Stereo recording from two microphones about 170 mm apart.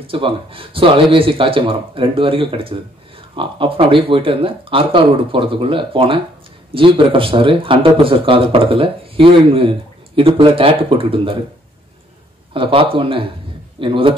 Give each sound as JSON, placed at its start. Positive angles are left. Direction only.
{"t": 0.0, "sound": "speech", "side_deg": -30}
{"t": 12.5, "sound": "a man's voice", "side_deg": -30}